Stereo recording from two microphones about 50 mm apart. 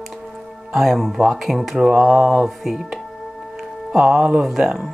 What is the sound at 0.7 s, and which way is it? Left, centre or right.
Speech, centre.